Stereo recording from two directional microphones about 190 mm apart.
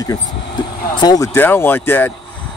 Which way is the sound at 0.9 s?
20° left (ahead or behind).